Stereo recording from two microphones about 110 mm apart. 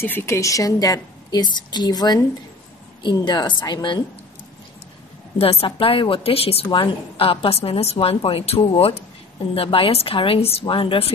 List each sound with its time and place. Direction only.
0.0 s a woman's voice: 20° left (ahead or behind); by 4.0 s 45° left (ahead or behind)
5.4 s a woman's voice: 60° left (ahead or behind)
8.6 s a woman's voice: 55° left (ahead or behind)